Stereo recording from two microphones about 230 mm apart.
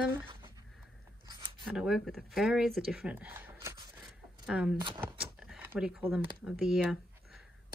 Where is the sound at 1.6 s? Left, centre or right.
Centre.